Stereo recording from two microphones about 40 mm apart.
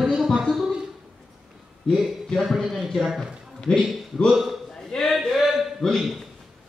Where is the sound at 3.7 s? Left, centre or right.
Left.